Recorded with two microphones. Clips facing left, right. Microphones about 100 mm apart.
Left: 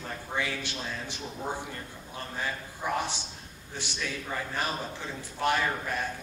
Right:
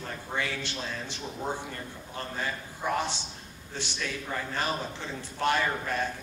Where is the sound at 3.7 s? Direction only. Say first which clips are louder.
Right 1 dB; 15° left (ahead or behind).